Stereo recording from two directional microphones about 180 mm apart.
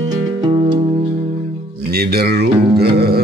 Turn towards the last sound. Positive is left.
turn(degrees=-60)  # may be behind; listen again after turning